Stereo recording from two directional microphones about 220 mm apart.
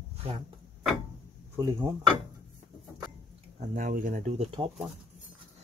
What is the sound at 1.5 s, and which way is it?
Speech, 15° right (ahead or behind).